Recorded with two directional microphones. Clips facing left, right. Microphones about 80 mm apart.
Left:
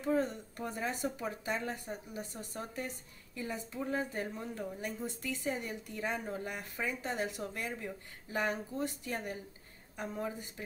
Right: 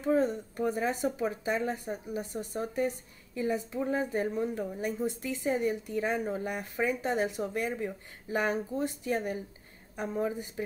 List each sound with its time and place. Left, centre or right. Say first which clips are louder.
0.0 s a woman's voice: right 5 dB; right